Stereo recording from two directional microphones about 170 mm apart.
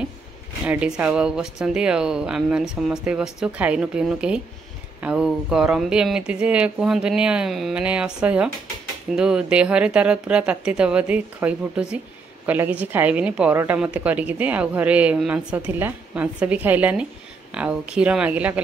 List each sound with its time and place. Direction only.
0.7 s a woman's voice: 5° right (ahead or behind)